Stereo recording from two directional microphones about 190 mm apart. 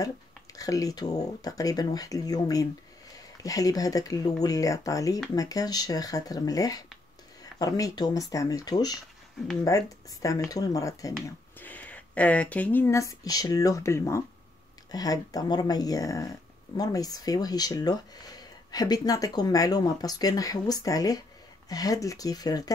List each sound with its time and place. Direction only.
0.6 s speech: 20° left (ahead or behind)